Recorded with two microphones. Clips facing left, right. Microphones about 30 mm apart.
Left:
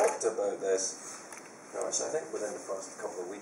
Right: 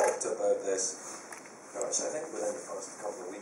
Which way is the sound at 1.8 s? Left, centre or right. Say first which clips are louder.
Left 1 dB; centre.